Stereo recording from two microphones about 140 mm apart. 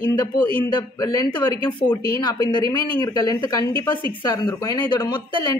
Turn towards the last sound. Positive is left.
turn(degrees=30)  # may be behind; listen again after turning